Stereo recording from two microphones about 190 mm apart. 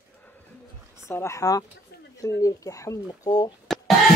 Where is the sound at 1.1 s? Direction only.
15° left (ahead or behind).